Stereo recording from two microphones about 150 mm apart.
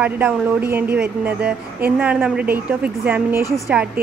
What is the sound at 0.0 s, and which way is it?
A woman's voice, 10° right (ahead or behind).